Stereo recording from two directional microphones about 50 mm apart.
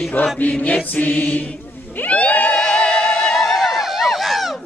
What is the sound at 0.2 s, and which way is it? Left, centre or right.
Chant, left.